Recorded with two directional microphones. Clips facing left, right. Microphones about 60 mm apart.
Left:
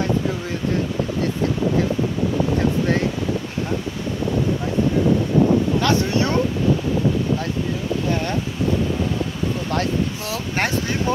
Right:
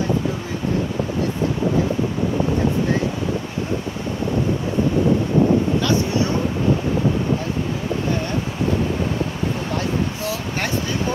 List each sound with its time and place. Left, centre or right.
5.8 s vehicle: left